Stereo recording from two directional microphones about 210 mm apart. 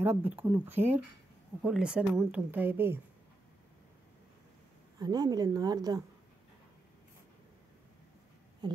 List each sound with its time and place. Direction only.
0.2 s a woman's voice: 10° right (ahead or behind)
4.9 s a woman's voice: 20° right (ahead or behind)
8.6 s speech: 20° right (ahead or behind)